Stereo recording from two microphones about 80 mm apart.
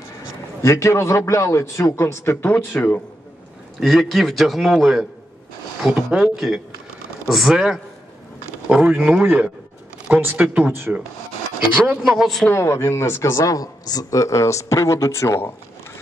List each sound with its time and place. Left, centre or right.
0.6 s speech: left
2.5 s speech: centre
3.8 s a man's voice: centre; by 10.9 s right
11.8 s a man's voice: centre
12.5 s speech: left
13.4 s speech: left